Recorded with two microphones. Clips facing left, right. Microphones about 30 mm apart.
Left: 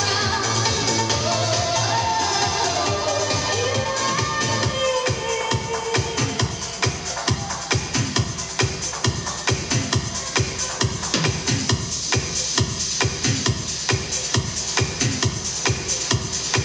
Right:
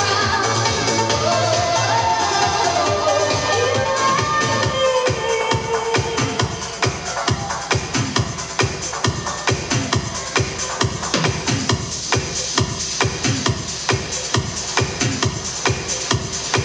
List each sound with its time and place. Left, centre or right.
0.0 s music: centre